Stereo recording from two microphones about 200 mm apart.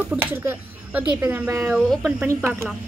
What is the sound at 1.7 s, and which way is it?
Speech, centre (ahead or behind).